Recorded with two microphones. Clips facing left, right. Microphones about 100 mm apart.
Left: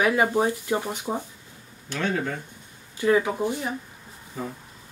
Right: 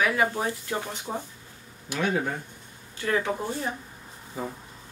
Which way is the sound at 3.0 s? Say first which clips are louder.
Left 5 dB; 15° left (ahead or behind).